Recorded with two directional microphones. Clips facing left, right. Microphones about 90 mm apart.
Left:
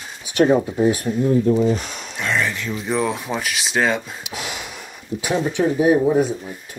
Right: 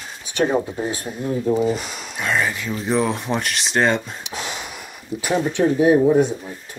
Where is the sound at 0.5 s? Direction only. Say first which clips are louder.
Left 4 dB; 5° right (ahead or behind).